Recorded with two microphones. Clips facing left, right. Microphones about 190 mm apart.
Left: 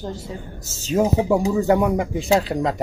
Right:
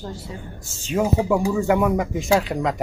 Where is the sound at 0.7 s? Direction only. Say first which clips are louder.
Left 3 dB; 40° left (ahead or behind).